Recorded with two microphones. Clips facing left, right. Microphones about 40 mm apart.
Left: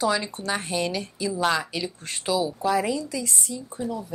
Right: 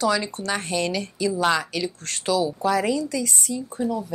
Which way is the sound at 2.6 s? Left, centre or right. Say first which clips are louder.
Right 2 dB; centre.